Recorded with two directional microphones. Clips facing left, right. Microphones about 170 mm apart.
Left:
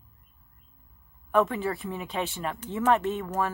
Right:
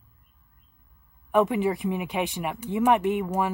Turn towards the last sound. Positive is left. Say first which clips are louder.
# right 4 dB
turn(degrees=-15)  # may be behind; listen again after turning